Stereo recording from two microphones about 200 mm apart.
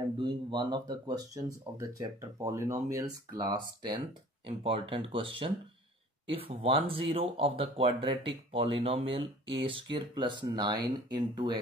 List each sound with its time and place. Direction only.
0.2 s speech: 20° right (ahead or behind)